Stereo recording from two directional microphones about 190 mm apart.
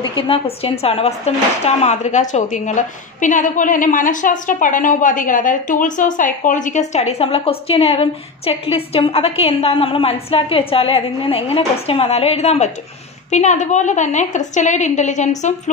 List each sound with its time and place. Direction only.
0.0 s speech: 30° left (ahead or behind)